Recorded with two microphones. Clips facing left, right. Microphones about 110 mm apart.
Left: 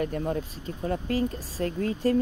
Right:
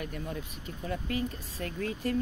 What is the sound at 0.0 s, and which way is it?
Speech, 45° left (ahead or behind).